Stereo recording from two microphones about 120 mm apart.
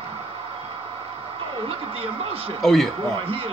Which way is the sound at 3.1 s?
50° right (ahead or behind).